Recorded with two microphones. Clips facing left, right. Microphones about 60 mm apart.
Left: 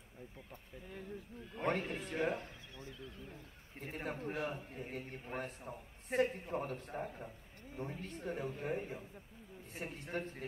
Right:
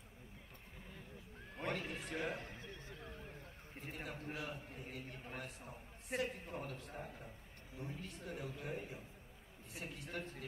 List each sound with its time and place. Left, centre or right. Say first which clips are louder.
0.8 s speech: left 10 dB; left
1.6 s a man's voice: left 6 dB; left
2.4 s a sound: even; right
3.8 s a man's voice: left 6 dB; left